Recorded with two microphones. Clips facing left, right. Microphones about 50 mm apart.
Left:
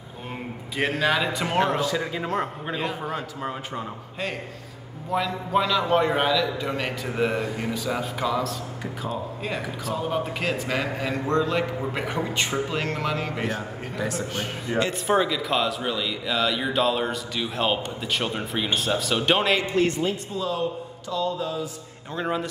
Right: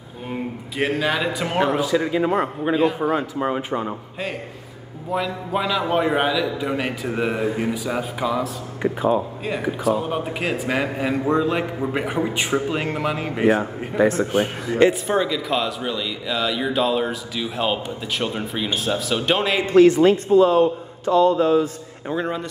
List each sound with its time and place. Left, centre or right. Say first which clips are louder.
0.3 s speech: right 6 dB; centre; by 3.9 s right
5.1 s a man's voice: even; centre
8.8 s speech: right 13 dB; right
9.4 s a man's voice: right 6 dB; centre
13.6 s speech: right 10 dB; right
14.7 s speech: right 6 dB; centre
15.0 s speech: right 1 dB; centre
19.7 s speech: right 10 dB; right
20.2 s speech: right 14 dB; right
21.1 s mantra: right 11 dB; right
22.1 s speech: right 2 dB; centre